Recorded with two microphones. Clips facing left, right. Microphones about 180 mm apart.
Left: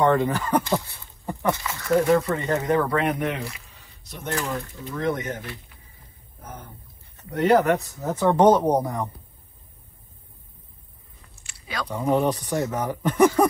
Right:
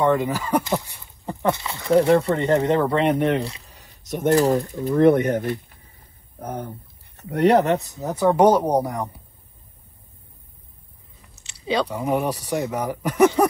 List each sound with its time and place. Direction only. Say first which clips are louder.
0.0 s speech: even; 10° right (ahead or behind); by 4.9 s 40° right (ahead or behind)
4.9 s speech: right 11 dB; 60° right (ahead or behind)
7.2 s speech: right 2 dB; 35° right (ahead or behind)
7.7 s speech: right 1 dB; 20° right (ahead or behind)
11.9 s speech: left 1 dB; 10° right (ahead or behind)